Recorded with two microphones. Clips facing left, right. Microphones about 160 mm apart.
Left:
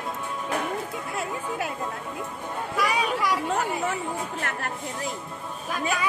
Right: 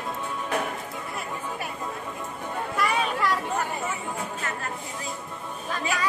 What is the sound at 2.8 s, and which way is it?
Children playing, centre (ahead or behind).